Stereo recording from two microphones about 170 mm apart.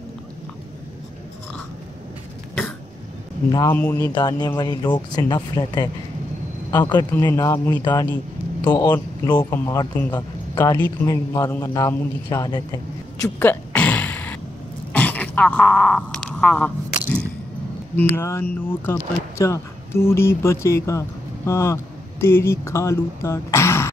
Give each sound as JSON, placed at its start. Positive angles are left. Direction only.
{"t": 3.9, "sound": "a man's voice", "side_deg": 25}
{"t": 13.4, "sound": "sneeze", "side_deg": 10}
{"t": 14.9, "sound": "a sound", "side_deg": 10}
{"t": 17.9, "sound": "speech", "side_deg": 15}